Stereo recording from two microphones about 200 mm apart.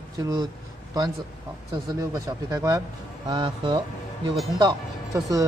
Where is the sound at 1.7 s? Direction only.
20° right (ahead or behind).